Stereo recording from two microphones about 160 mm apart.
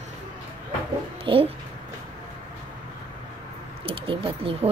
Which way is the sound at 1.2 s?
35° right (ahead or behind).